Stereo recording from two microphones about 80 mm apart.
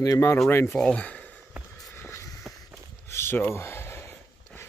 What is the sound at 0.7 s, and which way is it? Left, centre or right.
Speech, centre.